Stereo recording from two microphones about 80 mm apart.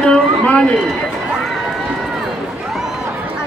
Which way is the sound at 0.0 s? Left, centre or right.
Centre.